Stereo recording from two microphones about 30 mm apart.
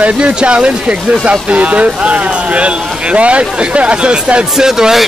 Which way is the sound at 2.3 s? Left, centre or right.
Right.